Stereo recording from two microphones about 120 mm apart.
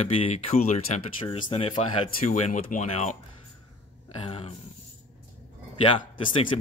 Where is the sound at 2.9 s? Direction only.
70° left (ahead or behind).